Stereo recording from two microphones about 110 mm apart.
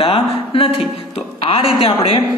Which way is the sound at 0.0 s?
55° left (ahead or behind).